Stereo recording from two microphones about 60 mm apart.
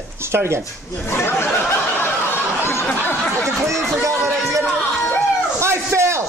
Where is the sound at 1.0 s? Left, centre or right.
Left.